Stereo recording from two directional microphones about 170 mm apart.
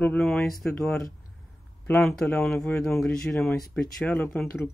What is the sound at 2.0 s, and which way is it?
Speech, centre (ahead or behind).